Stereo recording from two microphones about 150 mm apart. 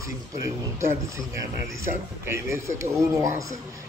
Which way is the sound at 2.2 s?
20° right (ahead or behind).